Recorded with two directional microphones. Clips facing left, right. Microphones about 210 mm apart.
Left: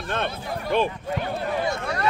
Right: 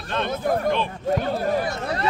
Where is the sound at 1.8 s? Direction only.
25° right (ahead or behind).